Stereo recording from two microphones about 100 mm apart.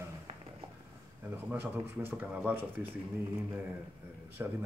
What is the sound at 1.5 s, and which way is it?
Speech, 20° right (ahead or behind).